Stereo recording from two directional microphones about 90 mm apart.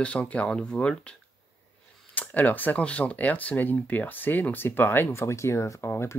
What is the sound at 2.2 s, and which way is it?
Speech, 20° left (ahead or behind).